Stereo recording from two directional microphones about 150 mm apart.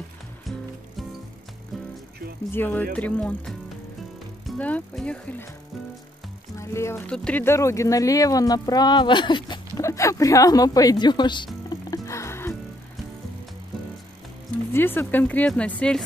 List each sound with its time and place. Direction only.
2.5 s speech: 10° left (ahead or behind)
6.5 s music: 20° left (ahead or behind)
7.1 s speech: 10° left (ahead or behind); by 9.6 s 30° left (ahead or behind)
9.8 s speech: 20° left (ahead or behind)
12.1 s music: 20° left (ahead or behind)
14.7 s speech: 15° left (ahead or behind)